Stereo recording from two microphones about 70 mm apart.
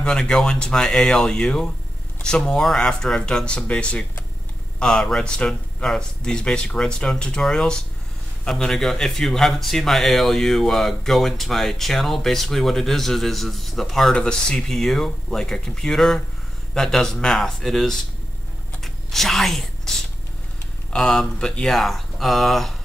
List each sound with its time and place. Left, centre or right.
0.0 s a man's voice: centre
18.8 s a sound: centre
20.9 s a man's voice: centre